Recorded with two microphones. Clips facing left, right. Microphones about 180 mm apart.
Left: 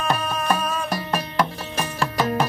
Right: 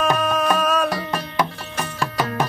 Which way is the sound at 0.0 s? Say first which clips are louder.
Right 5 dB; 90° right.